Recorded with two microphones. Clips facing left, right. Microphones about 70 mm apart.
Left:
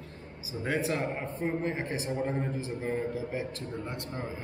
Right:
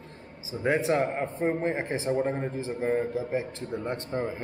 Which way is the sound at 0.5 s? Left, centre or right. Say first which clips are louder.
Right 7 dB; centre.